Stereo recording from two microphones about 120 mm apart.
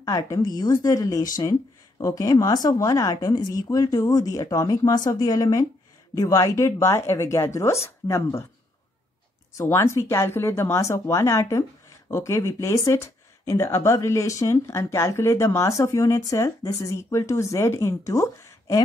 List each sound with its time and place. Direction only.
0.0 s speech: 30° left (ahead or behind)
9.6 s speech: 25° left (ahead or behind)